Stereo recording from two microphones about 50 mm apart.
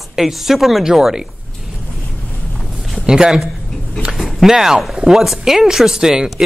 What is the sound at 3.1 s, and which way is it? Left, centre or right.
Speech, centre.